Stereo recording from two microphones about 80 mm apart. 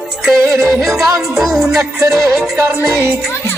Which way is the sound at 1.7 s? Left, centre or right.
Right.